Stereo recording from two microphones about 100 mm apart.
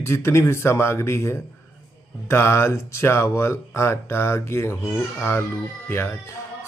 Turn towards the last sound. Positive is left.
turn(degrees=20)  # may be behind; listen again after turning